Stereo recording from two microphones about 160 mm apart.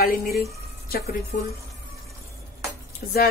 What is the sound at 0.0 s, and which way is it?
Speech, 65° left (ahead or behind).